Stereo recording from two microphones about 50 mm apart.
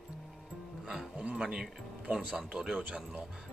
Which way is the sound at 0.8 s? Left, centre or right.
Centre.